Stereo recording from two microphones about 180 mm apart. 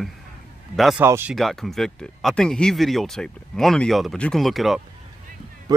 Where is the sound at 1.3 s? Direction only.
Centre (ahead or behind).